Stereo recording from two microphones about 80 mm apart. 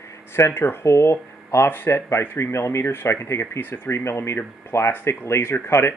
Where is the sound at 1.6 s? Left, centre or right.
Left.